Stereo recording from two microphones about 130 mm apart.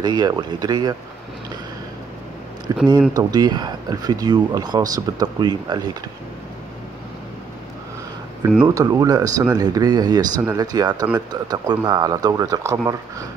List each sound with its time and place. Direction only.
0.0 s speech: 35° right (ahead or behind)
2.7 s speech: 30° right (ahead or behind)
8.6 s speech: 25° right (ahead or behind)